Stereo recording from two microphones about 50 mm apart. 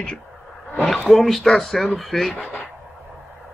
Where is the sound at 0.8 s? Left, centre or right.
Centre.